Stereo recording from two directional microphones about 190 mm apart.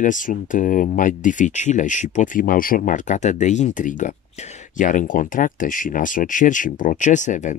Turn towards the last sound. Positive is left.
turn(degrees=40)  # may be behind; listen again after turning